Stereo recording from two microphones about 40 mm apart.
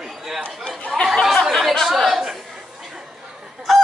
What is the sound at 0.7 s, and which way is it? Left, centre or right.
Chatter, left.